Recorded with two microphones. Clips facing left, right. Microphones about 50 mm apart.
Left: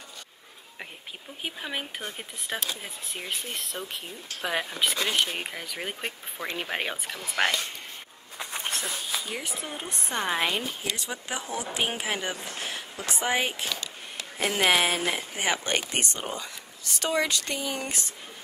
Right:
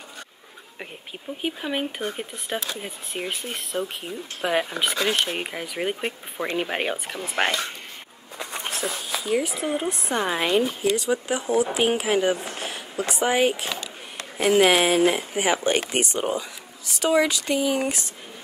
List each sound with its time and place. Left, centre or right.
1.4 s speech: centre
6.3 s speech: right
6.6 s speech: centre
7.2 s speech: right
8.4 s a sound: centre
9.8 s speech: centre
12.5 s a sound: centre
13.1 s speech: centre